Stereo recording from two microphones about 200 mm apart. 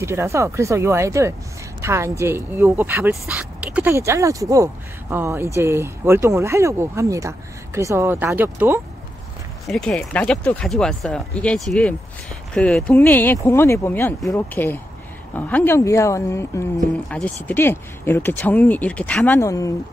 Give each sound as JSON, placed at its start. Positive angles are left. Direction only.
{"t": 0.0, "sound": "speech", "side_deg": -15}
{"t": 9.7, "sound": "speech", "side_deg": 5}